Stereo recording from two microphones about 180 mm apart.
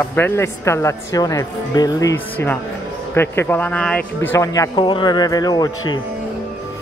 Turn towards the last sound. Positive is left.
turn(degrees=20)  # may be behind; listen again after turning